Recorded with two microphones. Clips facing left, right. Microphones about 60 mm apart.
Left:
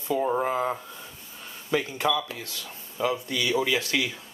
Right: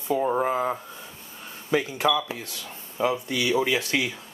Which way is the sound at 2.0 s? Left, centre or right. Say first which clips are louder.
Right 2 dB; centre.